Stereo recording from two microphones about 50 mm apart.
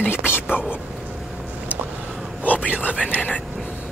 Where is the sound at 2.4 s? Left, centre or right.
Left.